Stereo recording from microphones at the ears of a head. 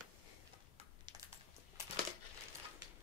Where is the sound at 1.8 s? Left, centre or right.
Left.